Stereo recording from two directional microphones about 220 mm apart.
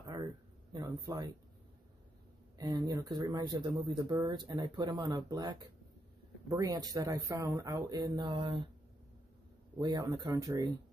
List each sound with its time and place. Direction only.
0.0 s a sound: 15° right (ahead or behind)
0.7 s speech: 15° right (ahead or behind)
2.5 s speech: 15° right (ahead or behind)
9.8 s speech: 15° right (ahead or behind)